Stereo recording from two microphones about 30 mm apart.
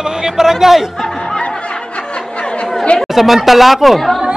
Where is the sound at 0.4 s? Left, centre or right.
Centre.